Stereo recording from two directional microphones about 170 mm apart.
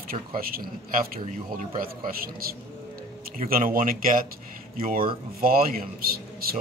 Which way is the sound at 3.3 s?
55° right (ahead or behind).